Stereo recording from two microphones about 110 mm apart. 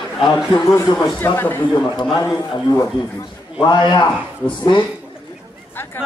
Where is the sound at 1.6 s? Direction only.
45° left (ahead or behind).